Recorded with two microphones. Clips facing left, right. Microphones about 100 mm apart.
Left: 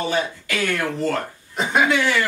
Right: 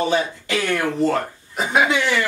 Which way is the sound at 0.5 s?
20° right (ahead or behind).